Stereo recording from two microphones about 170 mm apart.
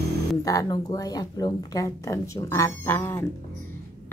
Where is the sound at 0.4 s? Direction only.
20° left (ahead or behind).